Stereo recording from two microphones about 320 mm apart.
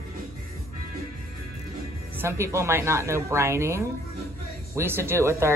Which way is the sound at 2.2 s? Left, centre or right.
Centre.